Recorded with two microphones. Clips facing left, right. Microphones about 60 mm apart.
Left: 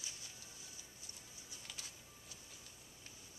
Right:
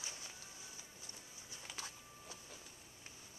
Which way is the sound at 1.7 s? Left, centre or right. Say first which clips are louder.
Right 5 dB; right.